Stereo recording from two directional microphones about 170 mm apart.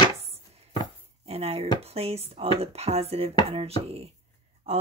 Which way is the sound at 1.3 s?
35° right (ahead or behind).